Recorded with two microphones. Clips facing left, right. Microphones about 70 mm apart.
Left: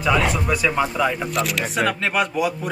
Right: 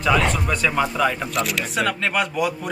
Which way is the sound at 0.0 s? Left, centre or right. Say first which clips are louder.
Even; centre.